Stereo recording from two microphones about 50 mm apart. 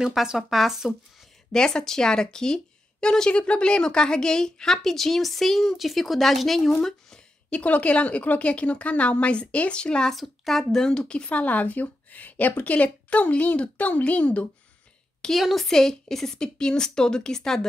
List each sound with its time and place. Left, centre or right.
0.4 s speech: centre
1.5 s speech: centre
7.4 s a woman's voice: left
10.1 s speech: centre
11.2 s a woman's voice: left
15.3 s speech: centre